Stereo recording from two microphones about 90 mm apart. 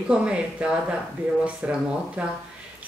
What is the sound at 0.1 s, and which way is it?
Speech, 10° right (ahead or behind).